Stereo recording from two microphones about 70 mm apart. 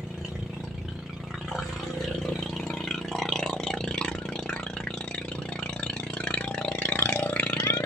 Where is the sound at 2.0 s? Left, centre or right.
Centre.